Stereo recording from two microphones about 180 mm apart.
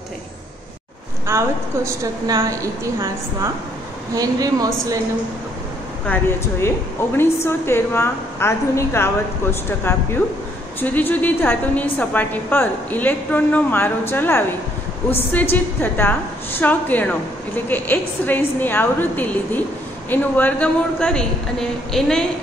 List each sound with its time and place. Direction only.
1.2 s a woman's voice: 15° right (ahead or behind)
6.0 s a woman's voice: 10° left (ahead or behind)
15.5 s a woman's voice: 10° left (ahead or behind)